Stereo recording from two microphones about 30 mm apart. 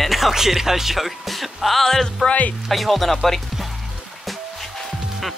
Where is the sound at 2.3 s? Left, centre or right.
Left.